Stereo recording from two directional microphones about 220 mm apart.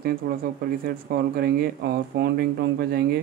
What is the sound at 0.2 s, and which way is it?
Speech, 45° right (ahead or behind).